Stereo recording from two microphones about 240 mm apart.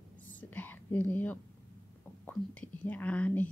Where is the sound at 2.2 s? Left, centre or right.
Centre.